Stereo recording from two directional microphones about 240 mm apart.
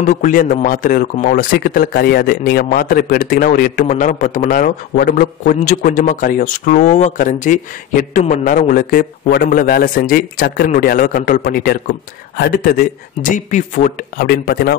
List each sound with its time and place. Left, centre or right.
0.0 s speech: left